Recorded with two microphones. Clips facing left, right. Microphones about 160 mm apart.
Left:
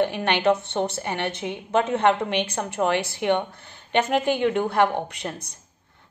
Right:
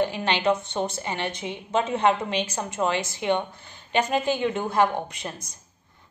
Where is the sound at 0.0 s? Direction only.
60° left (ahead or behind).